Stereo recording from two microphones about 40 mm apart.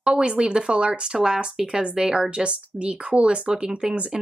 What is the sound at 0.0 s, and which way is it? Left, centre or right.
A woman's voice, right.